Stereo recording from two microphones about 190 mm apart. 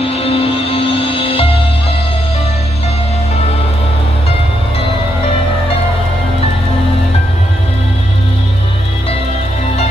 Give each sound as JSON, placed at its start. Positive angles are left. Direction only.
{"t": 0.2, "sound": "music", "side_deg": 30}